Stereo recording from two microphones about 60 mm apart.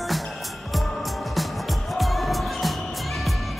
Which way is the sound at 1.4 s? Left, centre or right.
Centre.